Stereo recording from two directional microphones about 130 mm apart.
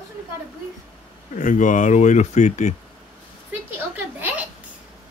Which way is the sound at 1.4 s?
80° left.